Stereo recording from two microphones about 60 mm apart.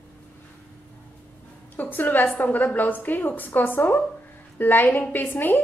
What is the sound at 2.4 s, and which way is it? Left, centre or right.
A woman's voice, left.